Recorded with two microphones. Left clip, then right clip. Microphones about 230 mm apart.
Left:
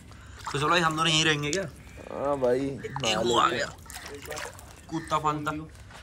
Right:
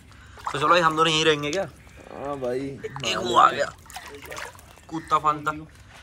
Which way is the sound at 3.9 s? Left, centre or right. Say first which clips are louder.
Right 1 dB; centre.